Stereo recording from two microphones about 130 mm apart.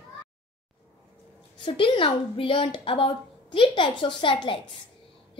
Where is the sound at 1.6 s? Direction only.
40° left (ahead or behind).